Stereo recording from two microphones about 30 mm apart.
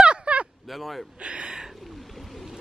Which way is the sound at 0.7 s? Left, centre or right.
Centre.